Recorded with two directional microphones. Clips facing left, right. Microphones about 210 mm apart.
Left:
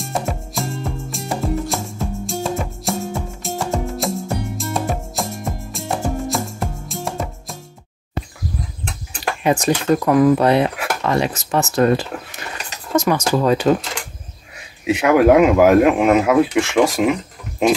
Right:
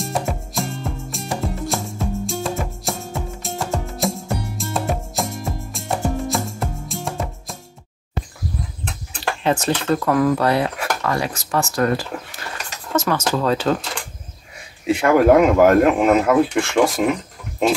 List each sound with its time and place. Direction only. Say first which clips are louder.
0.0 s music: even; centre (ahead or behind)
9.2 s speech: left 2 dB; 10° left (ahead or behind)
15.0 s speech: left 1 dB; 5° left (ahead or behind)